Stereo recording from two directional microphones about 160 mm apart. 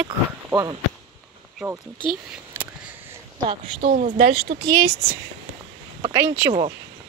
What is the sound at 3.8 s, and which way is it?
Speech, 60° right (ahead or behind).